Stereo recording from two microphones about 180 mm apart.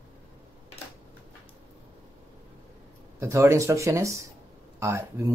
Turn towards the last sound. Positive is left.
turn(degrees=-15)  # may be behind; listen again after turning